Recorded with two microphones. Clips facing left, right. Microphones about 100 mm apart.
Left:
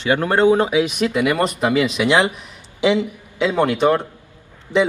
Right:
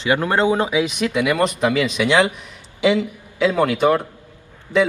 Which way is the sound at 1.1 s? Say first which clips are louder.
Even; 5° left (ahead or behind).